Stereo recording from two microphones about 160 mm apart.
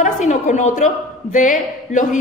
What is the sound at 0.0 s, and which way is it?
A woman's voice, 50° left (ahead or behind).